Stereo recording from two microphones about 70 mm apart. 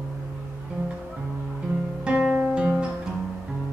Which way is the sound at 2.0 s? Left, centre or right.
Centre.